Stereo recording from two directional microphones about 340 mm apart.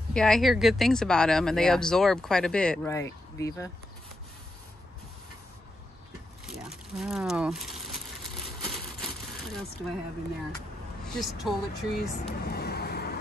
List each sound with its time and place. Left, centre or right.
0.1 s speech: centre
6.4 s a sound: centre
11.1 s speech: centre
12.3 s vehicle: left